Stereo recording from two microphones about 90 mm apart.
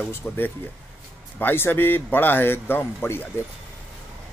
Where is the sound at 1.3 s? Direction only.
25° left (ahead or behind).